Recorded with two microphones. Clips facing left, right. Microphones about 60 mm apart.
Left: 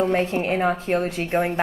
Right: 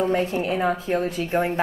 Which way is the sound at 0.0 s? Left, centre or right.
Left.